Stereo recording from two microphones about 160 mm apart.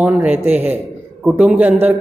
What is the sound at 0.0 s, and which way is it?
A man's voice, 10° right (ahead or behind).